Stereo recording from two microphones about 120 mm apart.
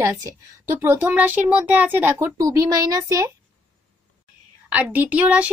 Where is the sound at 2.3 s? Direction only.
30° right (ahead or behind).